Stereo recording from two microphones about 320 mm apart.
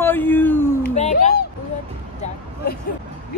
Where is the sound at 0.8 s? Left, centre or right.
Left.